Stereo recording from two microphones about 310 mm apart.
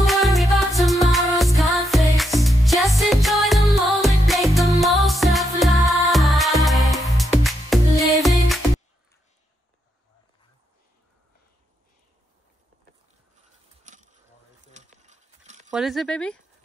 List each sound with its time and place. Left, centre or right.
0.0 s music: centre
13.8 s bee: right
14.7 s a sound: right
15.7 s speech: centre